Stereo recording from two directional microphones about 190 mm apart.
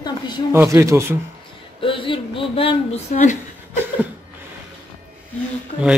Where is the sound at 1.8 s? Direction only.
25° left (ahead or behind).